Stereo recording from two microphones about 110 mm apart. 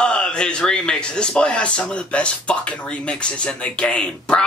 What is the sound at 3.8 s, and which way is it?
Speech, 10° left (ahead or behind).